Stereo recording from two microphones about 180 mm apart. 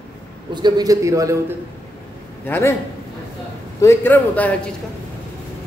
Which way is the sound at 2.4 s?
10° left (ahead or behind).